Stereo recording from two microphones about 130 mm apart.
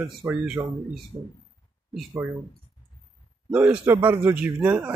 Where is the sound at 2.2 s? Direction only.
20° right (ahead or behind).